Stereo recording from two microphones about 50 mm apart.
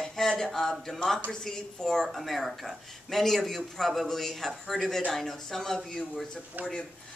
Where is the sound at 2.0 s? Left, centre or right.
Centre.